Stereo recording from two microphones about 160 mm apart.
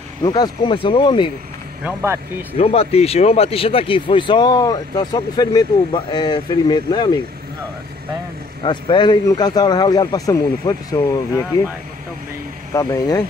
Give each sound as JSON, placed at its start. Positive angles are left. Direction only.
{"t": 0.2, "sound": "speech", "side_deg": 25}
{"t": 1.9, "sound": "speech", "side_deg": -15}
{"t": 2.5, "sound": "speech", "side_deg": 40}
{"t": 8.6, "sound": "speech", "side_deg": 30}
{"t": 12.7, "sound": "speech", "side_deg": 20}